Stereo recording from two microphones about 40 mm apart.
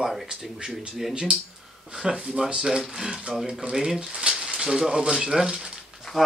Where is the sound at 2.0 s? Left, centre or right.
Centre.